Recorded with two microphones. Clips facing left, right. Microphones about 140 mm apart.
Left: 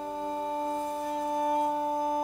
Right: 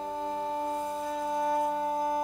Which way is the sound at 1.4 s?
20° left (ahead or behind).